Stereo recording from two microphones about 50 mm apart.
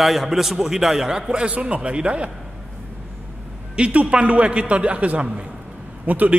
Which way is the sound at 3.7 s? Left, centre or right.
Right.